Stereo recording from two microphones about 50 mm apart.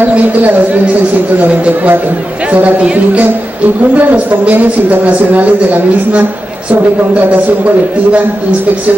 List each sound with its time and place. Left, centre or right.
0.0 s speech: right
3.9 s speech: right
7.2 s speech: right